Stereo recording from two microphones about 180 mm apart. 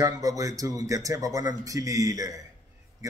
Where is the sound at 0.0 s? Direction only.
20° right (ahead or behind).